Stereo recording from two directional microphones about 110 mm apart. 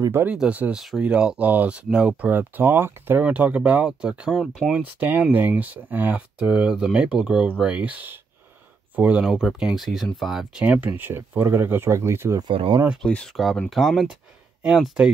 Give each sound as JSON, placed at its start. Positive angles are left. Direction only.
{"t": 0.1, "sound": "speech", "side_deg": -20}
{"t": 10.6, "sound": "speech", "side_deg": -15}
{"t": 12.4, "sound": "speech", "side_deg": -50}
{"t": 13.0, "sound": "speech", "side_deg": 5}